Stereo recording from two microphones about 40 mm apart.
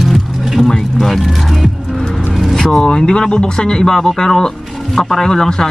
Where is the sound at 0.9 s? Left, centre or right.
Centre.